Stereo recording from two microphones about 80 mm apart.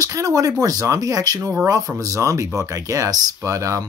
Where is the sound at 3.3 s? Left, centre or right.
Right.